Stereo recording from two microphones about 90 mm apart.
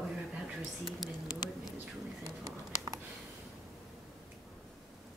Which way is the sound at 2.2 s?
40° right (ahead or behind).